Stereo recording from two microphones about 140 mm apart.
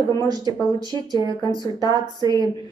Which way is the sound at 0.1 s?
30° right (ahead or behind).